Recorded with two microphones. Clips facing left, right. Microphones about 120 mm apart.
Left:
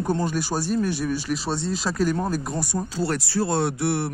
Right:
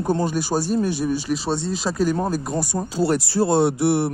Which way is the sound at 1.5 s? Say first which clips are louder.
Right 2 dB; centre (ahead or behind).